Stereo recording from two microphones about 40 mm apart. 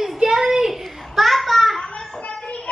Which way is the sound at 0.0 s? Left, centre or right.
Centre.